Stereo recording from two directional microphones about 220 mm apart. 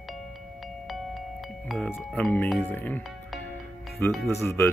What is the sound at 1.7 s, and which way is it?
Speech, 5° left (ahead or behind).